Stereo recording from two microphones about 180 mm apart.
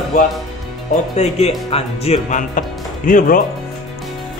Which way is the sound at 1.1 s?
35° left (ahead or behind).